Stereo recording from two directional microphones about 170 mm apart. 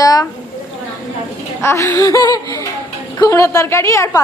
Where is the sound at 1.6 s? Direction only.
15° left (ahead or behind).